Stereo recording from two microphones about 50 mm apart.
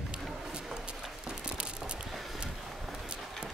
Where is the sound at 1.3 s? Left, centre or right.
Centre.